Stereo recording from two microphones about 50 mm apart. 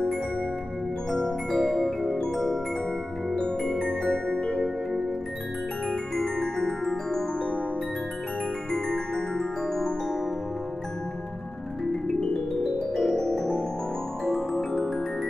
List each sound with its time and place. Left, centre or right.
1.1 s glockenspiel: centre
2.3 s music: centre
3.3 s music: centre
5.9 s music: centre
8.7 s music: centre
11.9 s music: centre
12.9 s keyboard: centre
14.2 s music: centre